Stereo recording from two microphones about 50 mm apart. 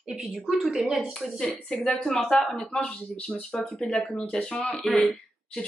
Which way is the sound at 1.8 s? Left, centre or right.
Centre.